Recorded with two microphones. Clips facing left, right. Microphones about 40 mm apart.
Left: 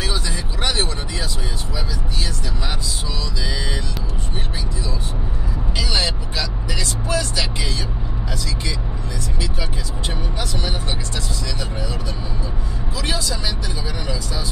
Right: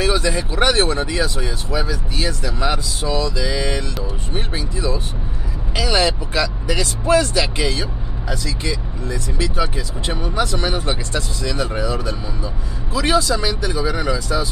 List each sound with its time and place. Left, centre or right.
0.0 s speech: right
1.1 s speech: right
1.8 s speech: right
4.7 s speech: right
10.6 s speech: right